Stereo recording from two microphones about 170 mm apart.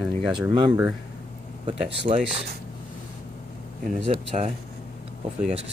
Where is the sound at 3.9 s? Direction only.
55° right (ahead or behind).